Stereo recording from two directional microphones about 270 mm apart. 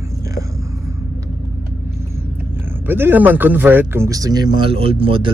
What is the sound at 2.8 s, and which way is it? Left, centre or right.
Speech, centre.